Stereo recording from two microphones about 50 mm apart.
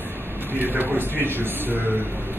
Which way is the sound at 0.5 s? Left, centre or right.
Right.